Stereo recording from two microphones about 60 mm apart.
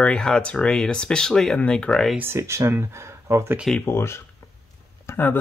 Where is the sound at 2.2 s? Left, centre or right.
Right.